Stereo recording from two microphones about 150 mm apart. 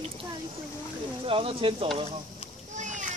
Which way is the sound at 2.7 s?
55° right (ahead or behind).